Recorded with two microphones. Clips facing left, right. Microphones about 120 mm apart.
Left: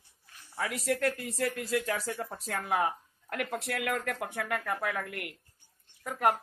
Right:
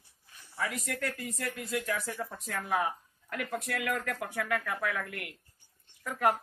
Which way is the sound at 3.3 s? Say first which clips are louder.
Left 1 dB; 65° left (ahead or behind).